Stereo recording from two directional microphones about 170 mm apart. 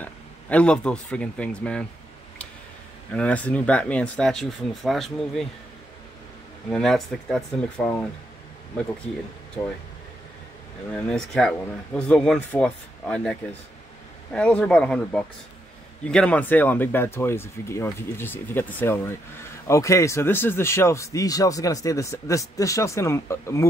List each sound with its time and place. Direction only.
0.0 s speech: 10° left (ahead or behind)
3.2 s speech: 10° left (ahead or behind)
6.7 s speech: centre (ahead or behind)
11.1 s speech: 5° left (ahead or behind)